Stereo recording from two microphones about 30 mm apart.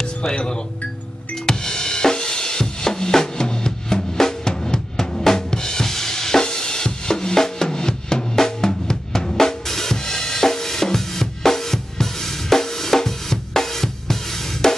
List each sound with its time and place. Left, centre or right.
1.4 s drum: left
14.6 s drum kit: centre